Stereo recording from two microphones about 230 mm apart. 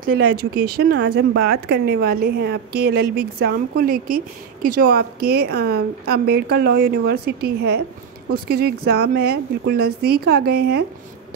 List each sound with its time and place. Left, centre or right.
0.0 s speech: right